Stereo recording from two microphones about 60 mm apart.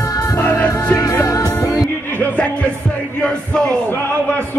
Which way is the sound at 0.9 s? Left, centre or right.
Left.